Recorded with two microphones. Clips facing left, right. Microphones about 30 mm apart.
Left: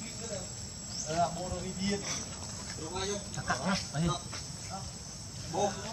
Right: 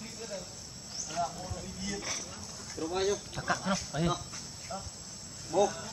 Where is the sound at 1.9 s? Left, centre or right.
Centre.